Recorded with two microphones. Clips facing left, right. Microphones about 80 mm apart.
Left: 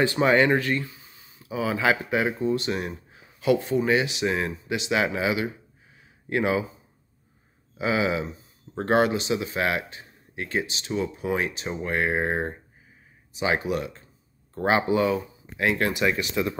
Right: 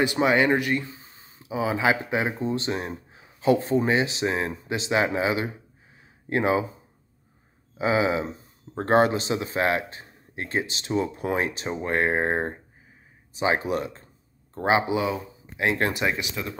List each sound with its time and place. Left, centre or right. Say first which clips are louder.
0.0 s a man's voice: left 1 dB; centre; by 6.6 s right
7.7 s a man's voice: right 2 dB; right
14.5 s speech: even; centre